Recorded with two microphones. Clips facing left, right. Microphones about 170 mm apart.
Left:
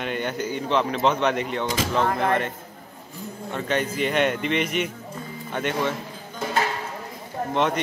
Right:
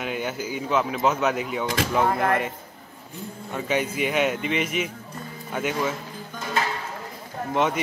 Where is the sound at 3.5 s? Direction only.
10° right (ahead or behind).